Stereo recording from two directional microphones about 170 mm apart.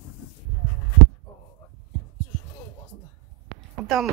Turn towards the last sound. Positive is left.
turn(degrees=0)  # may be behind; listen again after turning